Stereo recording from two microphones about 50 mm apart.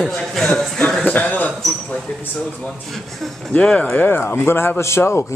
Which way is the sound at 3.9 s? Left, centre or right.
Left.